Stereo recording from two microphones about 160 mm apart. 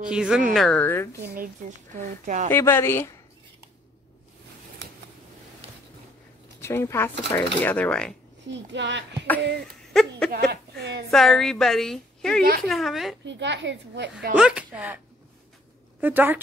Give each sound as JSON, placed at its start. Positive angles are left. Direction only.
{"t": 0.0, "sound": "a woman's voice", "side_deg": -5}
{"t": 0.7, "sound": "speech", "side_deg": 15}
{"t": 2.0, "sound": "speech", "side_deg": -50}
{"t": 2.5, "sound": "speech", "side_deg": 15}
{"t": 6.6, "sound": "speech", "side_deg": 15}
{"t": 8.7, "sound": "a woman's voice", "side_deg": -90}
{"t": 9.9, "sound": "a woman's voice", "side_deg": 5}
{"t": 10.3, "sound": "a woman's voice", "side_deg": -90}
{"t": 11.1, "sound": "a woman's voice", "side_deg": 0}
{"t": 13.2, "sound": "a woman's voice", "side_deg": -90}
{"t": 14.3, "sound": "speech", "side_deg": -10}
{"t": 16.0, "sound": "speech", "side_deg": -10}